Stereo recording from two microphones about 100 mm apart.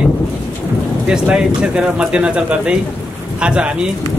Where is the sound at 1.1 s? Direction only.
10° right (ahead or behind).